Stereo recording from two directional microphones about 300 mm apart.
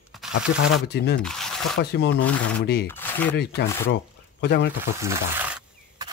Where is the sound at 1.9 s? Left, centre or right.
Left.